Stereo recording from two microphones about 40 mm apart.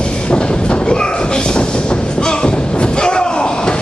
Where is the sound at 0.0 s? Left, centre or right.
Left.